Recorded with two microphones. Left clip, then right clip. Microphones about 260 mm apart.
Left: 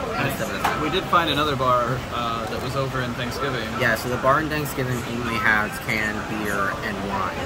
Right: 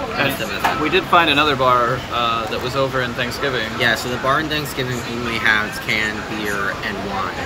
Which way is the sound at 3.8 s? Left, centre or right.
Centre.